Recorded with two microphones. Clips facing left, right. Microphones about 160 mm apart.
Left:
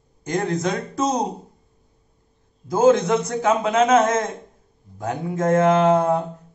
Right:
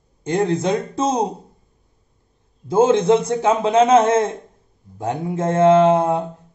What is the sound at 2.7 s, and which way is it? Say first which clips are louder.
Mantra: right 2 dB; 25° right (ahead or behind).